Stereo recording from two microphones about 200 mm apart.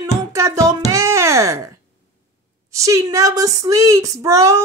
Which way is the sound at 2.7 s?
15° right (ahead or behind).